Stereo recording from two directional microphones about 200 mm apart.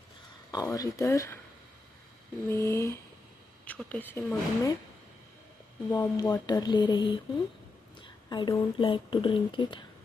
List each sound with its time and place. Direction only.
0.5 s a woman's voice: 20° left (ahead or behind)
2.5 s a woman's voice: 15° left (ahead or behind)
5.9 s speech: 20° left (ahead or behind)